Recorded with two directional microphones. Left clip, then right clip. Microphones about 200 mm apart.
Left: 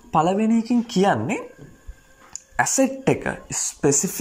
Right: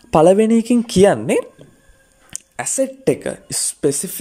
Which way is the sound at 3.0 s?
30° right (ahead or behind).